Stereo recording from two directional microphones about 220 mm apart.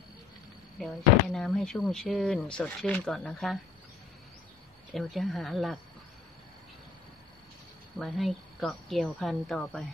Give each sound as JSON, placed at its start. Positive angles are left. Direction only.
{"t": 0.7, "sound": "speech", "side_deg": 0}
{"t": 4.9, "sound": "speech", "side_deg": 0}
{"t": 8.0, "sound": "speech", "side_deg": 0}